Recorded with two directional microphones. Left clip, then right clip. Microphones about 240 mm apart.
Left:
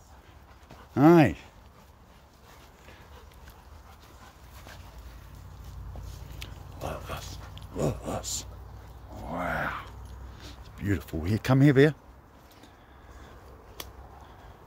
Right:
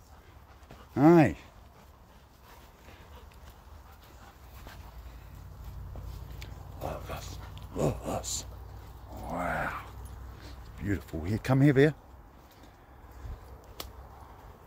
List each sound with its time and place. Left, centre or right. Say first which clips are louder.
0.9 s speech: left 2 dB; centre
6.4 s dog: left 1 dB; centre
9.2 s a sound: left 1 dB; centre